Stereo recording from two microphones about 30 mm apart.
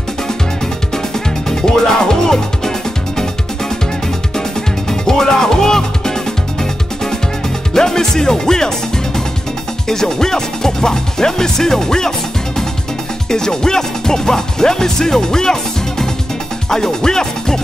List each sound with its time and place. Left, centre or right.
0.9 s music: centre
4.4 s music: centre
7.7 s speech: centre
9.8 s music: centre
13.3 s music: centre